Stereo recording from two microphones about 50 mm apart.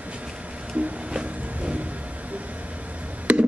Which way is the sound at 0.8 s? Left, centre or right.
Right.